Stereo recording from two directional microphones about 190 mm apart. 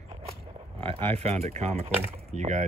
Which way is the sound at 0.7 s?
30° right (ahead or behind).